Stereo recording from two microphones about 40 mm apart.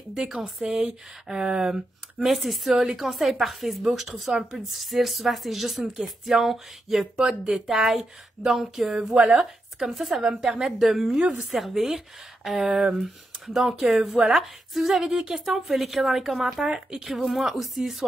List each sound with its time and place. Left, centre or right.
0.3 s speech: centre
2.1 s speech: centre
10.2 s speech: centre
10.5 s speech: centre
11.1 s speech: right
11.5 s speech: centre
15.0 s speech: centre
16.6 s speech: centre
17.0 s speech: centre